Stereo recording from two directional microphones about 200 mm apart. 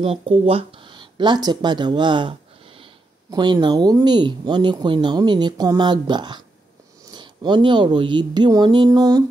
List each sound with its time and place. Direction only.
0.0 s speech: 30° right (ahead or behind)